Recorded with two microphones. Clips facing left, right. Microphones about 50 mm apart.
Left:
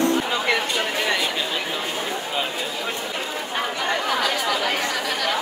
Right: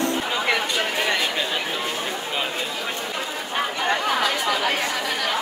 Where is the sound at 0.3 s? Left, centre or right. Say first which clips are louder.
Even; centre.